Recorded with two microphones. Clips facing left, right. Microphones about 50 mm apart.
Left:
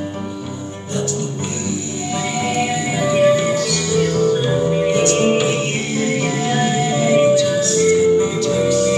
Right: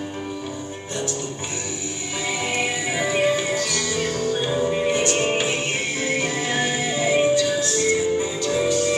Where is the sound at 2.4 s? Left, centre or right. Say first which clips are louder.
Left 5 dB; centre.